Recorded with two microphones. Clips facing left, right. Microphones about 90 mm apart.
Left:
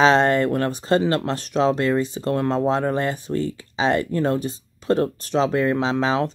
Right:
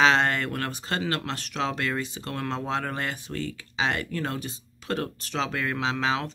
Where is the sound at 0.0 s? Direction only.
30° left (ahead or behind).